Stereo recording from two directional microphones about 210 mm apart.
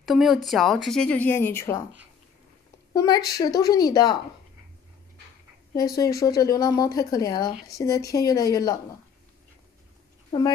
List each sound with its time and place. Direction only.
0.0 s speech: centre (ahead or behind)
2.9 s speech: 15° left (ahead or behind)
5.8 s speech: 15° left (ahead or behind)